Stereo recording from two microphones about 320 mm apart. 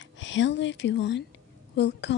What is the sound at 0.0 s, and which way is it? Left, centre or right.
Speech, left.